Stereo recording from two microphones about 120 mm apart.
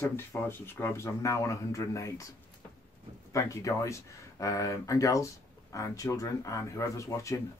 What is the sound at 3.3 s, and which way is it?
Speech, 25° left (ahead or behind).